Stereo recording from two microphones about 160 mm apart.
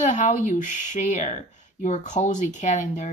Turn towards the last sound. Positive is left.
turn(degrees=50)  # may be behind; listen again after turning